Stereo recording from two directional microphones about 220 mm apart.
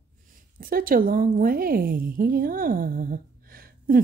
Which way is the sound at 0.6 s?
40° right (ahead or behind).